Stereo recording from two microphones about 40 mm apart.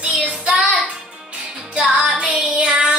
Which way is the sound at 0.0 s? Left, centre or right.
Right.